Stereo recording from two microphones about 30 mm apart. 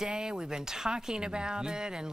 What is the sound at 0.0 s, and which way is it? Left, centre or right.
Speech, right.